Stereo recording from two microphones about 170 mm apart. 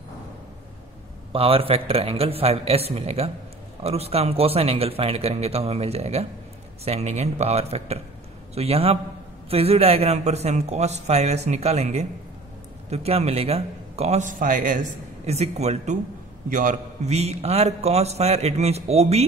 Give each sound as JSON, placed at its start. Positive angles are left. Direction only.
{"t": 1.3, "sound": "a man's voice", "side_deg": -35}
{"t": 15.2, "sound": "a man's voice", "side_deg": -40}
{"t": 16.4, "sound": "a man's voice", "side_deg": -50}